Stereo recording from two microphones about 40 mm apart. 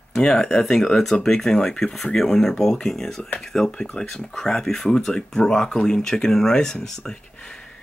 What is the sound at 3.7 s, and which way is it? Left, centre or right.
Speech, left.